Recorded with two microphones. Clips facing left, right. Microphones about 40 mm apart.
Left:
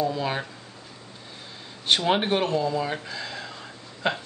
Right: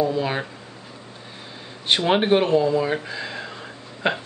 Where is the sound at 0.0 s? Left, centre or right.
Centre.